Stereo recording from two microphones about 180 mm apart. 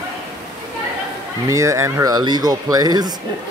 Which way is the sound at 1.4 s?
15° right (ahead or behind).